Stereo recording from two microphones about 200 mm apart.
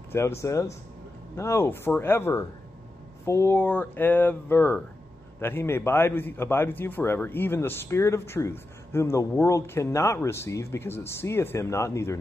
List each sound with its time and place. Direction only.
0.4 s a man's voice: 15° left (ahead or behind)